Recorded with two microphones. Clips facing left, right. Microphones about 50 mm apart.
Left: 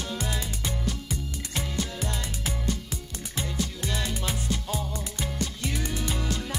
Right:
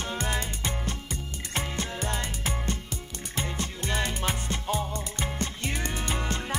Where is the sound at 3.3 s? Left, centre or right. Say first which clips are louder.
Left 1 dB; right.